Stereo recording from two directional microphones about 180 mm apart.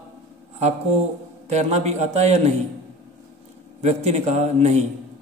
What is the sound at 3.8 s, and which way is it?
A man's voice, 40° right (ahead or behind).